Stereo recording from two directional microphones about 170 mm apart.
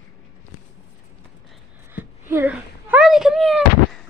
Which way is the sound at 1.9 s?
10° right (ahead or behind).